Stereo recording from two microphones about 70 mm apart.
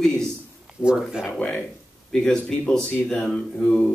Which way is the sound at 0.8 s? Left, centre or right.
Centre.